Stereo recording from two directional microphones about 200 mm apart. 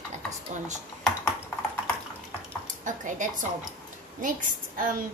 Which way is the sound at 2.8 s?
40° right (ahead or behind).